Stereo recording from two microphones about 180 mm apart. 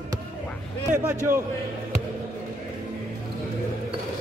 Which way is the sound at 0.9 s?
15° right (ahead or behind).